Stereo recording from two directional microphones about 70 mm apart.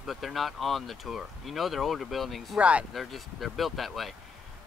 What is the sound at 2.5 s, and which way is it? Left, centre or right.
Speech, centre.